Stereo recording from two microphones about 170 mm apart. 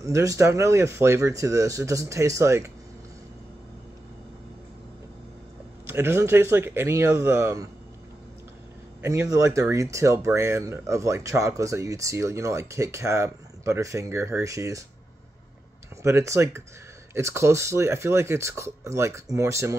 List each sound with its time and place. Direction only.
0.0 s speech: 20° right (ahead or behind)
5.9 s speech: 15° right (ahead or behind)
9.0 s speech: 15° right (ahead or behind)
16.0 s speech: 15° right (ahead or behind)